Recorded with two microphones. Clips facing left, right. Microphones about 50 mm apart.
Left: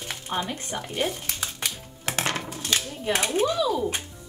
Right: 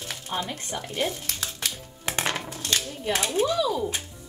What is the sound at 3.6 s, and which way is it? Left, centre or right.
Speech, centre.